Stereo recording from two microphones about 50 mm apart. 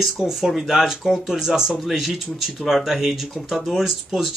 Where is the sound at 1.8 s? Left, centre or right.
Centre.